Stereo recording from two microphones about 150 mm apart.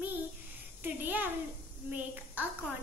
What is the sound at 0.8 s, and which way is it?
A woman's voice, 10° right (ahead or behind).